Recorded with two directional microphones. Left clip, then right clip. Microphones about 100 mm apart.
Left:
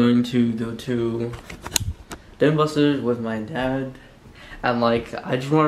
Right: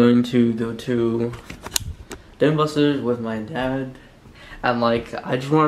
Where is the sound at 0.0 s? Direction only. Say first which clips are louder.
Right 3 dB; 30° right (ahead or behind).